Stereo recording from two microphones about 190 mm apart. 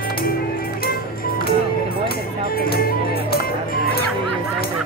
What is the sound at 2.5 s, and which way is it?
Music, 50° left (ahead or behind).